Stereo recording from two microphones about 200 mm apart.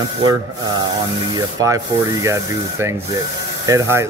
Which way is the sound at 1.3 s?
15° right (ahead or behind).